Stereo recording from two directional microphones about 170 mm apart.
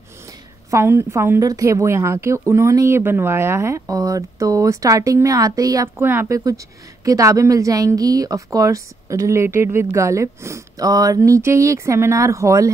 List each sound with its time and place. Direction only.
0.7 s a woman's voice: 15° right (ahead or behind)